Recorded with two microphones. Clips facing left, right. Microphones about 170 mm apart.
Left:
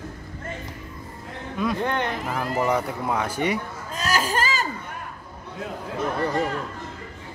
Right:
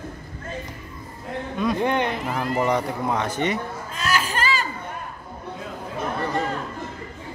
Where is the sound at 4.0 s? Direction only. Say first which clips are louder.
Left 1 dB; 40° left (ahead or behind).